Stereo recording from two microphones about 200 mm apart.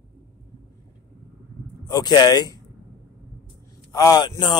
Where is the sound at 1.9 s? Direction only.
20° left (ahead or behind).